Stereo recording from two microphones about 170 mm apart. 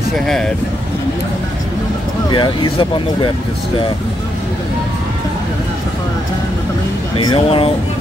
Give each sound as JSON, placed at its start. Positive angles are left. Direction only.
{"t": 2.2, "sound": "speech", "side_deg": 25}
{"t": 7.2, "sound": "speech", "side_deg": 30}